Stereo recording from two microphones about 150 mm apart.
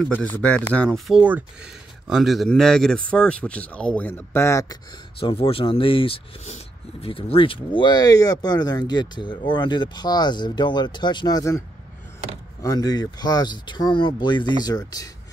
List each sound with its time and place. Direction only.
0.1 s speech: 10° left (ahead or behind)
5.2 s speech: 35° left (ahead or behind)
12.6 s speech: 25° left (ahead or behind)